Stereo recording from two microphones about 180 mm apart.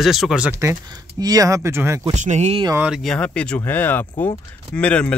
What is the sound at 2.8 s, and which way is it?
Speech, centre (ahead or behind).